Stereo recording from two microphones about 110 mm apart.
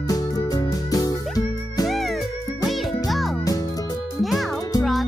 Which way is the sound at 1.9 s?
Centre (ahead or behind).